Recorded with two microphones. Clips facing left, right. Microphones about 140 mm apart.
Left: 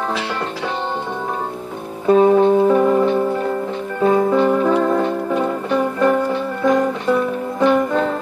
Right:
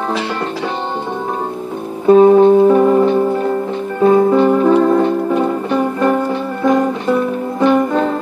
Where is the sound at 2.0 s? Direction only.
30° right (ahead or behind).